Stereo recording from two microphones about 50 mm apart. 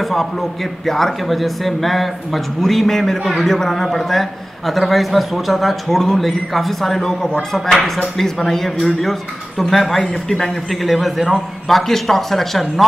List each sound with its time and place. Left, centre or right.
0.0 s a man's voice: centre